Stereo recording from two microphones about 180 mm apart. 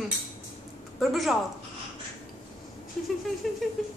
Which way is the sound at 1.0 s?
Centre (ahead or behind).